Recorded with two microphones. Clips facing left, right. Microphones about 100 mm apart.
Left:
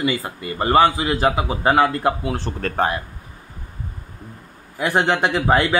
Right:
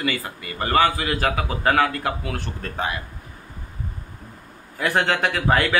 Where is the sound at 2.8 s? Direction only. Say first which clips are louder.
Left 6 dB; 55° left (ahead or behind).